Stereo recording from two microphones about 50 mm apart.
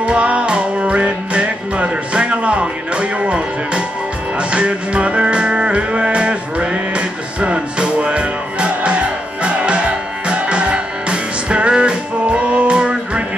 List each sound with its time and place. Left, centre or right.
0.0 s music: right